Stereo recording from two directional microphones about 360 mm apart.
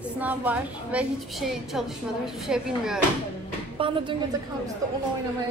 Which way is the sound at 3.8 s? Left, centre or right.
Centre.